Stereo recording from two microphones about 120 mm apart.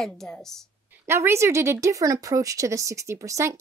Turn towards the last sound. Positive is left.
turn(degrees=-25)  # may be behind; listen again after turning